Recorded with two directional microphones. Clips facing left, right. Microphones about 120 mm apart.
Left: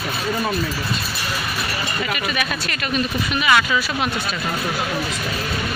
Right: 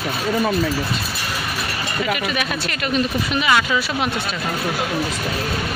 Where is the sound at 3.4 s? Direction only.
25° right (ahead or behind).